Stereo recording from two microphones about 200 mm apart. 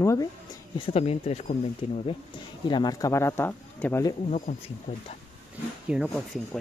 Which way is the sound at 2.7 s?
20° left (ahead or behind).